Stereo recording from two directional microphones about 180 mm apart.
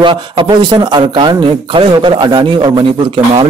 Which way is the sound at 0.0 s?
25° right (ahead or behind).